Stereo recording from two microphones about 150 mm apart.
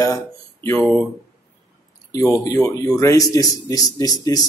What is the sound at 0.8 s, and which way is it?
Speech, 5° left (ahead or behind).